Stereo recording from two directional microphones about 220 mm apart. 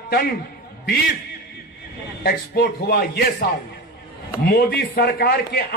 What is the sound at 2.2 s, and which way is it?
Speech, 45° left (ahead or behind).